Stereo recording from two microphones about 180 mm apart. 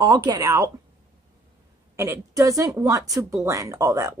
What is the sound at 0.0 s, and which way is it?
Speech, 25° right (ahead or behind).